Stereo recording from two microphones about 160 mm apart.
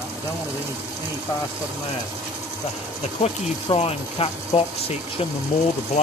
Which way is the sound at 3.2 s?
40° left (ahead or behind).